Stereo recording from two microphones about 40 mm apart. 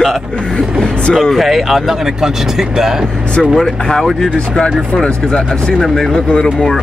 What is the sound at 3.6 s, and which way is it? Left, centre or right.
Speech, centre.